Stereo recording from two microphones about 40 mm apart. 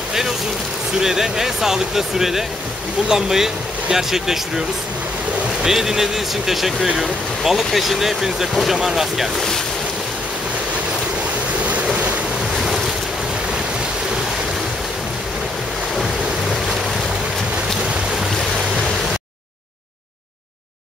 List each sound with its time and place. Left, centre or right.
1.0 s speech: centre
5.7 s speech: centre
11.6 s waves: right
12.6 s waves: centre